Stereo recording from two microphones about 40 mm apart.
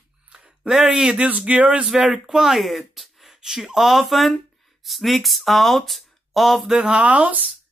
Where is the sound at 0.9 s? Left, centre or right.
Right.